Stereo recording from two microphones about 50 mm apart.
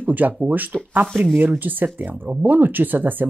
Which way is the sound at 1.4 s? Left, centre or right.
Right.